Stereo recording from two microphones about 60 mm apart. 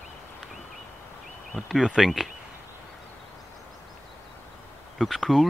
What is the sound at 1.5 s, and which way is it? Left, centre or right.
Speech, centre.